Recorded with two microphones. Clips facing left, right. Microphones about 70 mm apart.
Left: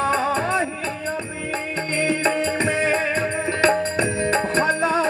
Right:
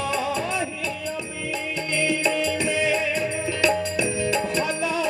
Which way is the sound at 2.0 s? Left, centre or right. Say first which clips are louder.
Left 2 dB; left.